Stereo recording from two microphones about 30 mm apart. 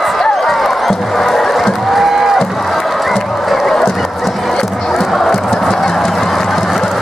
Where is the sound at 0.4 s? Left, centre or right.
Centre.